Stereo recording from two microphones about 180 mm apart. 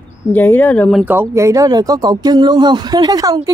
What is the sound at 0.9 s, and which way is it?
Speech, 10° right (ahead or behind).